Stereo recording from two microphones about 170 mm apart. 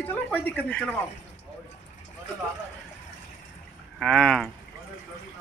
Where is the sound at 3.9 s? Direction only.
5° left (ahead or behind).